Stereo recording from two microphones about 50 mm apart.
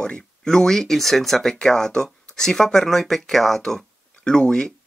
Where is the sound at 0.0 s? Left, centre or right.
Centre.